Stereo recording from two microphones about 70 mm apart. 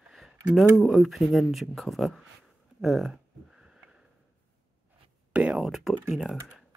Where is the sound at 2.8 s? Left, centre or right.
Centre.